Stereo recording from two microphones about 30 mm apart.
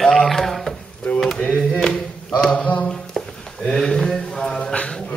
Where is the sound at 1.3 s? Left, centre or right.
Left.